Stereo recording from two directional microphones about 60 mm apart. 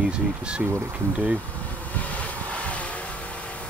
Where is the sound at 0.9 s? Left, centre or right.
Right.